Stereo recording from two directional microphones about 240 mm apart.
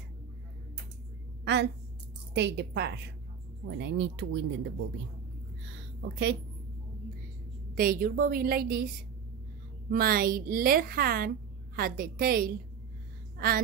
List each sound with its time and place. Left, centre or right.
1.4 s a woman's voice: right
5.9 s a woman's voice: right
7.7 s a woman's voice: right
9.8 s a woman's voice: right